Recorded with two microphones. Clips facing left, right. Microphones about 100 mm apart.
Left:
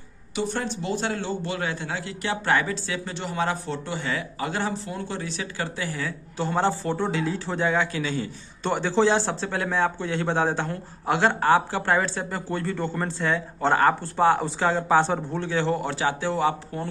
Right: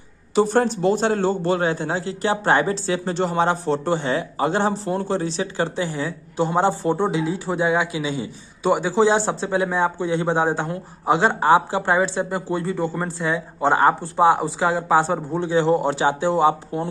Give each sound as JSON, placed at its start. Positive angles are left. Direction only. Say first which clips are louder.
{"t": 0.3, "sound": "a man's voice", "louder": "right 10 dB", "side_deg": -40}